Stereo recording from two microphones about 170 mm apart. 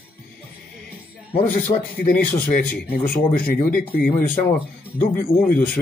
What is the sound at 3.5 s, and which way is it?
Speech, 65° left (ahead or behind).